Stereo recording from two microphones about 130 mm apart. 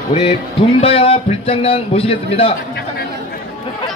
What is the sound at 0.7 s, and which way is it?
A man's voice, 45° left (ahead or behind).